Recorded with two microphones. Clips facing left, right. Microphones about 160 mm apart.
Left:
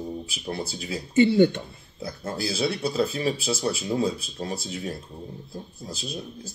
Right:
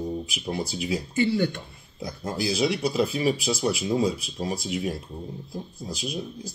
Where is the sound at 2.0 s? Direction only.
15° right (ahead or behind).